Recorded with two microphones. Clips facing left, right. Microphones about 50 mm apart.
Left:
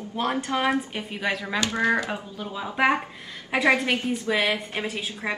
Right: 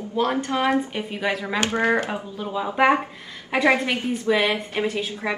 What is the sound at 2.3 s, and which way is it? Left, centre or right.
Speech, centre.